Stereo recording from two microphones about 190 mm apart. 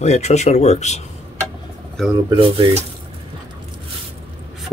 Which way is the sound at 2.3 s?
25° right (ahead or behind).